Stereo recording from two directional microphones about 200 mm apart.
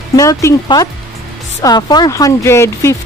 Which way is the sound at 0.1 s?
15° left (ahead or behind).